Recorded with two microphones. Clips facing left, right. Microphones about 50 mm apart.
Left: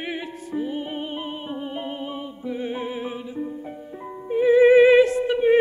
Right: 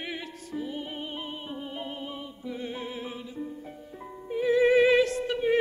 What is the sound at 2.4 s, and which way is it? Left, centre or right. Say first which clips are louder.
Music: left 7 dB; left.